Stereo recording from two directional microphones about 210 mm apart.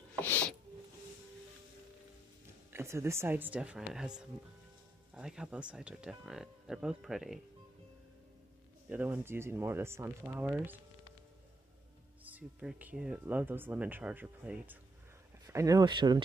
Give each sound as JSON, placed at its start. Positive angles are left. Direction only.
{"t": 0.2, "sound": "a sound", "side_deg": 10}
{"t": 2.7, "sound": "speech", "side_deg": -15}
{"t": 8.8, "sound": "speech", "side_deg": -10}
{"t": 12.3, "sound": "speech", "side_deg": -5}